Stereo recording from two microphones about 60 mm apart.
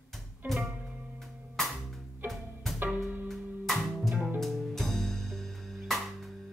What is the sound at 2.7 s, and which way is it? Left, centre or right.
Music, right.